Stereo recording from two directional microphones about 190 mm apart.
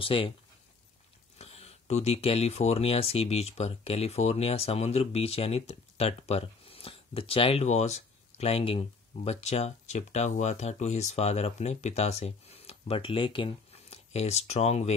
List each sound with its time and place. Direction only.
0.0 s speech: 25° left (ahead or behind)
1.4 s speech: 35° left (ahead or behind)